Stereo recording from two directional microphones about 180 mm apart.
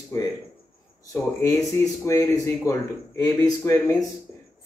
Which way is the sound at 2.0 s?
15° left (ahead or behind).